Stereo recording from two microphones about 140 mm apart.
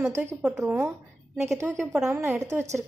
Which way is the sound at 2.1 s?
20° right (ahead or behind).